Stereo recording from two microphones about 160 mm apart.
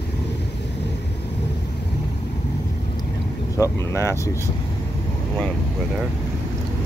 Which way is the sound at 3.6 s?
20° left (ahead or behind).